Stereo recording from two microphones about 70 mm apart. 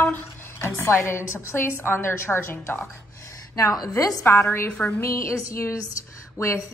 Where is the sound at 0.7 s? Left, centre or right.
Left.